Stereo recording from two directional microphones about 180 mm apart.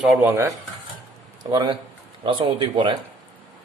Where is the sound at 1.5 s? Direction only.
25° right (ahead or behind).